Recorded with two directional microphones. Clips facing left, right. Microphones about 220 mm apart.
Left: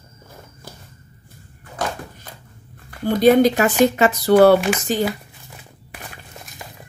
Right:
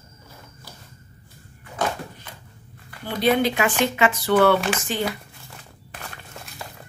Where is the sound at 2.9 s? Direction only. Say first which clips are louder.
Left 7 dB; 45° left (ahead or behind).